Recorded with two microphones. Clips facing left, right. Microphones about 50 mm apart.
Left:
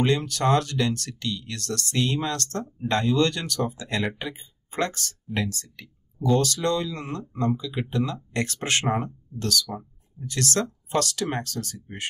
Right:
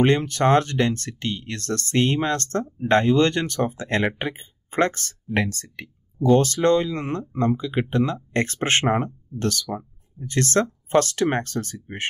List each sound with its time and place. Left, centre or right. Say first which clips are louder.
0.0 s speech: right 4 dB; right